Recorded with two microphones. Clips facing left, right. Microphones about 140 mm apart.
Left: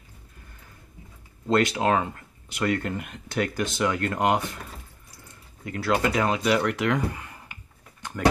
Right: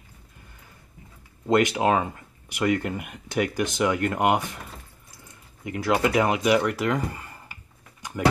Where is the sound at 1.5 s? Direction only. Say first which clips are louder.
Right 1 dB; 15° right (ahead or behind).